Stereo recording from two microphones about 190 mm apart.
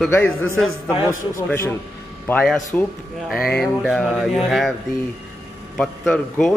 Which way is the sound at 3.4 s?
55° left (ahead or behind).